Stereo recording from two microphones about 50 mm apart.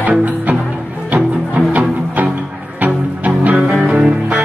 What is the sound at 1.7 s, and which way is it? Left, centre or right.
Music, right.